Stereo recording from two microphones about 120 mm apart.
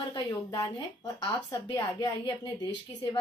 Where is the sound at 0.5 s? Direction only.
25° left (ahead or behind).